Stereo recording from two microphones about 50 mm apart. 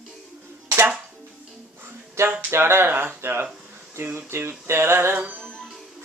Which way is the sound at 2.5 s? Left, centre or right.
Right.